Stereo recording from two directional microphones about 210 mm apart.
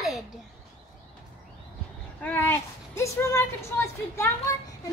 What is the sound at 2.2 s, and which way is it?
A woman's voice, 10° left (ahead or behind).